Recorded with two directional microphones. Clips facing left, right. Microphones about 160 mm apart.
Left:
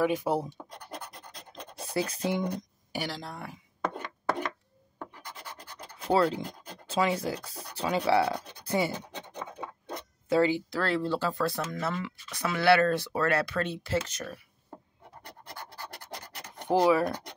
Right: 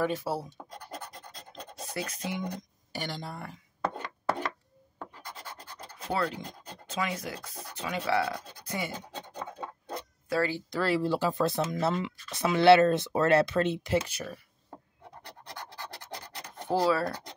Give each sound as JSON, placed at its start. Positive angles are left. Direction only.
{"t": 0.0, "sound": "speech", "side_deg": 15}
{"t": 2.0, "sound": "speech", "side_deg": 30}
{"t": 2.9, "sound": "speech", "side_deg": 5}
{"t": 6.1, "sound": "speech", "side_deg": 25}
{"t": 10.3, "sound": "speech", "side_deg": 20}
{"t": 10.7, "sound": "speech", "side_deg": -5}
{"t": 16.6, "sound": "speech", "side_deg": 15}